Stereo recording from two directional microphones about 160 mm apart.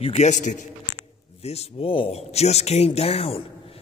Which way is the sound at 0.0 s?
40° left (ahead or behind).